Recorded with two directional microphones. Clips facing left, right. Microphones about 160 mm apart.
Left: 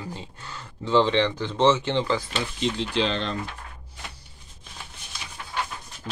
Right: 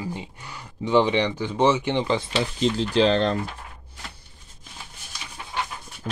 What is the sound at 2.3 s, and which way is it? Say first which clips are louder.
Speech: right 4 dB; 35° right (ahead or behind).